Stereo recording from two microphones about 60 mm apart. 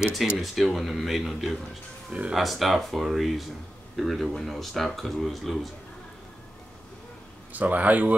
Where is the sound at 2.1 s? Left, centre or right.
Centre.